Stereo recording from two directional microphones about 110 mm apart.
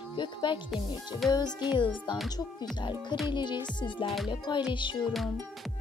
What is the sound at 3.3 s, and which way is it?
Speech, 45° left (ahead or behind).